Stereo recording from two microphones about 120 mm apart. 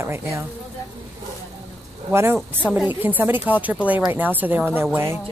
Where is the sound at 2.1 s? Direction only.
20° right (ahead or behind).